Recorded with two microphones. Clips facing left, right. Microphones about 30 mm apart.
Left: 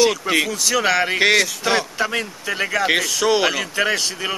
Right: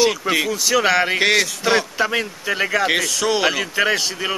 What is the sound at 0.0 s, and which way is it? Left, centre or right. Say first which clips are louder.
Speech: even; centre.